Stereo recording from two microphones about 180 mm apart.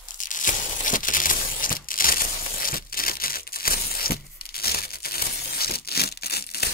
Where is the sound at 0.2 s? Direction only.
45° left (ahead or behind).